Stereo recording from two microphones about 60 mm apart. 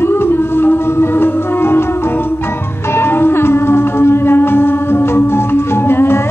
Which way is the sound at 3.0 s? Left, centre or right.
Left.